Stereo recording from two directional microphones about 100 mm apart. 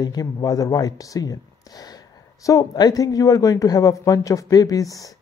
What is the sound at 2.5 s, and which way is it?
Speech, 40° left (ahead or behind).